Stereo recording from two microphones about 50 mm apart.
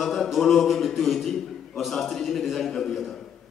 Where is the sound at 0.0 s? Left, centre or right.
Centre.